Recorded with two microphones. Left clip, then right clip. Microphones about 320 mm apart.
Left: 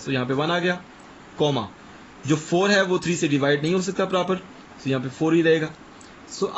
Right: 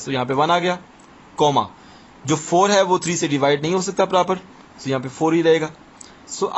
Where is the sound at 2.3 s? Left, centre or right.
Centre.